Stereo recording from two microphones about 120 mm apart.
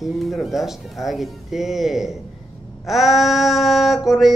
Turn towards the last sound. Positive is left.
turn(degrees=0)  # may be behind; listen again after turning